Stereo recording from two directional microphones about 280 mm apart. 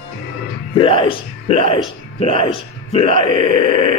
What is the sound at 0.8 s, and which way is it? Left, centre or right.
Speech, centre.